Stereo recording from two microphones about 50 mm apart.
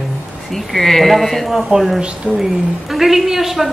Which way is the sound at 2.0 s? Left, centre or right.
Right.